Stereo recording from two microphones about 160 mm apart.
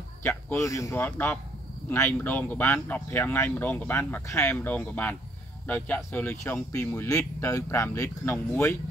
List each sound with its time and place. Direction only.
0.2 s speech: 15° left (ahead or behind)